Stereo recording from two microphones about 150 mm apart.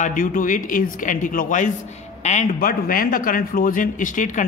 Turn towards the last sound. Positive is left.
turn(degrees=60)  # may be behind; listen again after turning